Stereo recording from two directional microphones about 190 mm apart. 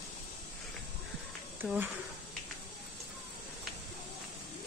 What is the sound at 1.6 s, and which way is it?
Speech, 10° right (ahead or behind).